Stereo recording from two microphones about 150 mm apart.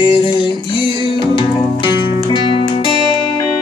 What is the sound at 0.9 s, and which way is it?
Music, 35° left (ahead or behind).